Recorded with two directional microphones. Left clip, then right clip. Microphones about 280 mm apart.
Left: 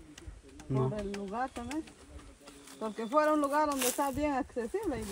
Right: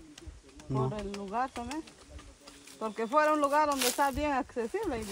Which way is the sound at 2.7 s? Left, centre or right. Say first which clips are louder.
Right 3 dB; centre.